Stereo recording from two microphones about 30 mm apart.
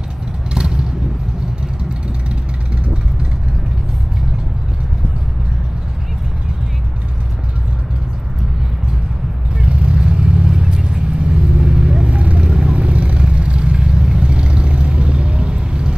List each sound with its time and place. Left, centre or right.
0.6 s vehicle: right
9.6 s vehicle: right
10.5 s vehicle: right
12.1 s vehicle: right
12.4 s vehicle: right
12.7 s vehicle: right
14.2 s vehicle: right